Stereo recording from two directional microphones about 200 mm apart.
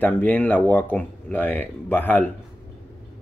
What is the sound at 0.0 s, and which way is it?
Speech, 5° left (ahead or behind).